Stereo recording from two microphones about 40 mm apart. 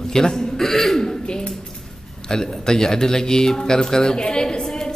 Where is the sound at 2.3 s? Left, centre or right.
Centre.